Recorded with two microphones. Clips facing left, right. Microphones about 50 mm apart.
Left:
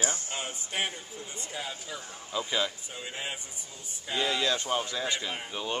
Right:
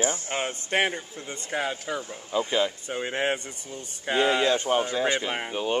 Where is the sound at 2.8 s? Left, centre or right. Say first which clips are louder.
Right 11 dB; right.